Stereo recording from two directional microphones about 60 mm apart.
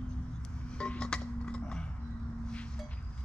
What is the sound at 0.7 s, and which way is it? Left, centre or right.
Music, centre.